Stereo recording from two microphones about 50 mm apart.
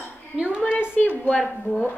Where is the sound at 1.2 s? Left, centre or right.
Centre.